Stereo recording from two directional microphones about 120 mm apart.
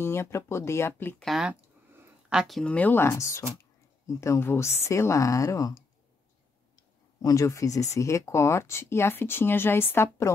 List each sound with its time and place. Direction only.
0.0 s speech: 20° left (ahead or behind)
1.2 s speech: centre (ahead or behind); by 5.9 s 30° left (ahead or behind)
7.2 s speech: 30° left (ahead or behind)